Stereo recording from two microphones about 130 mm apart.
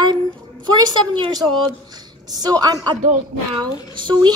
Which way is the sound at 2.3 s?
30° right (ahead or behind).